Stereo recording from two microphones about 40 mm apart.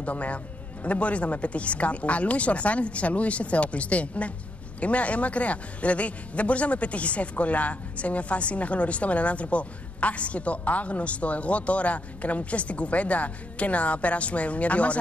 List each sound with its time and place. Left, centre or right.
0.0 s a man's voice: left